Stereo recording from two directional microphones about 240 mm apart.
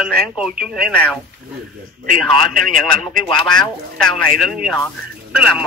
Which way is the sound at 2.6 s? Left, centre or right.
Centre.